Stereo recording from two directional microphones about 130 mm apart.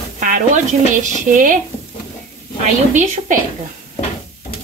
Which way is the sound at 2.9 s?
80° right.